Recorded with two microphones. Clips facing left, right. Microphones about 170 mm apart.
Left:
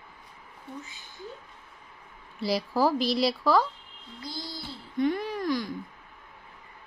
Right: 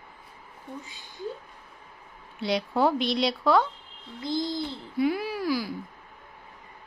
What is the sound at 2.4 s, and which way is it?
A woman's voice, centre (ahead or behind).